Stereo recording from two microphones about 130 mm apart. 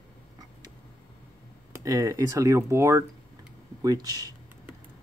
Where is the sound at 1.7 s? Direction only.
25° right (ahead or behind).